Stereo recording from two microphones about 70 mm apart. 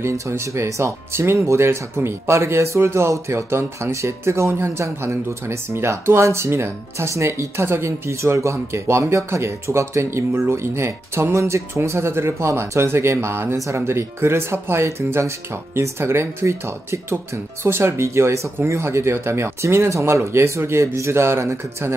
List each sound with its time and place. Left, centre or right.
0.0 s speech: right